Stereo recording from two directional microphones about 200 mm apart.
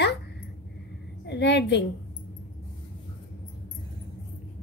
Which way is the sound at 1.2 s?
60° left (ahead or behind).